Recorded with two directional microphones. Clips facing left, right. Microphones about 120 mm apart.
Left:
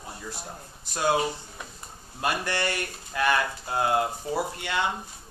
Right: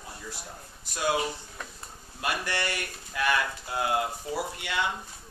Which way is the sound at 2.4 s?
5° right (ahead or behind).